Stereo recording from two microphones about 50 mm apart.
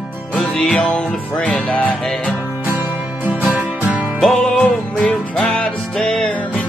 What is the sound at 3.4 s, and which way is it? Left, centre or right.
Music, right.